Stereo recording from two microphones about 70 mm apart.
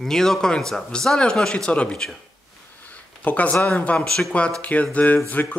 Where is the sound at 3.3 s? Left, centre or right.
Left.